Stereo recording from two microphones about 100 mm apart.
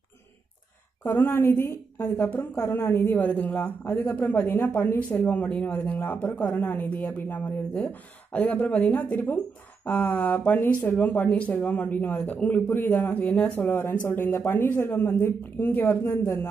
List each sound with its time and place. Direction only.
1.0 s a man's voice: 20° left (ahead or behind)
2.5 s a man's voice: 30° left (ahead or behind)